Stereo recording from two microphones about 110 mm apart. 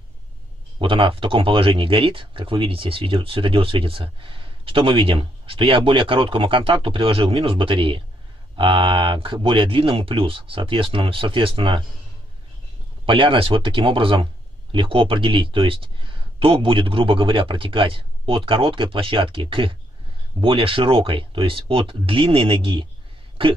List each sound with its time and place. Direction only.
0.7 s speech: 50° right (ahead or behind)
13.0 s speech: 50° right (ahead or behind)